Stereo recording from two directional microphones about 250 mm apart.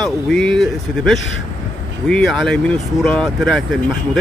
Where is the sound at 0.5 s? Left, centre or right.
Centre.